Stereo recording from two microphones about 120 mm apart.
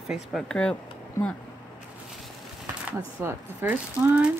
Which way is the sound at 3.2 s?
15° right (ahead or behind).